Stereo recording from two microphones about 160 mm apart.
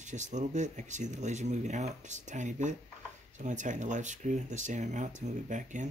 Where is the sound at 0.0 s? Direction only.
50° right (ahead or behind).